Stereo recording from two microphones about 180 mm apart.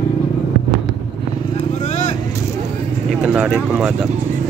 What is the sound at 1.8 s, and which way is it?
Vehicle, 40° left (ahead or behind).